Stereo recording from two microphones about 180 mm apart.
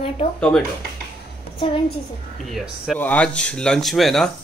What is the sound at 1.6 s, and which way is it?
Speech, 30° left (ahead or behind).